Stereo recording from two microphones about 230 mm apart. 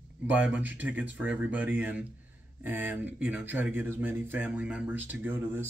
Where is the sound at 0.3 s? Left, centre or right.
Centre.